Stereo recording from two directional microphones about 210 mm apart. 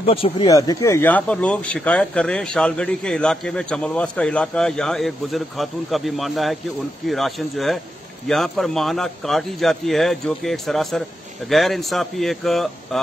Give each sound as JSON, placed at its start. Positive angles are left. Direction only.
{"t": 0.0, "sound": "speech", "side_deg": 25}